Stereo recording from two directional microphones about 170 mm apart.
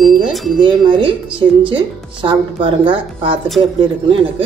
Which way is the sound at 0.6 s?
30° right (ahead or behind).